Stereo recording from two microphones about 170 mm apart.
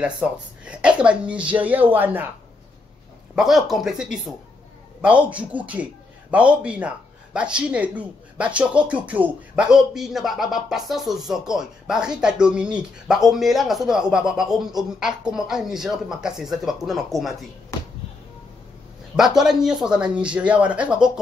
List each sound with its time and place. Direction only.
0.0 s speech: 5° right (ahead or behind)
3.3 s speech: centre (ahead or behind)
19.1 s speech: 5° right (ahead or behind)